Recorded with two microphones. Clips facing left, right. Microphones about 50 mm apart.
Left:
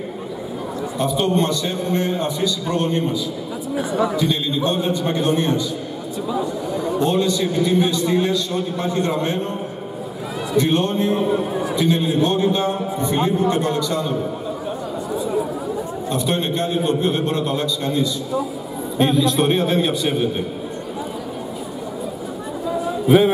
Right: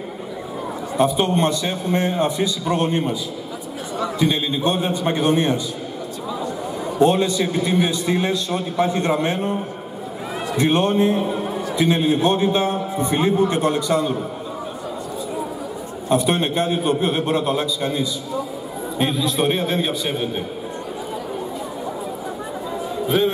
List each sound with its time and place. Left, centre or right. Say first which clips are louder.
0.9 s a man's voice: right 1 dB; centre
4.2 s a man's voice: even; centre
7.0 s a man's voice: right 3 dB; centre
10.6 s a man's voice: right 2 dB; centre
16.1 s a man's voice: right 4 dB; centre
23.0 s a man's voice: left 5 dB; centre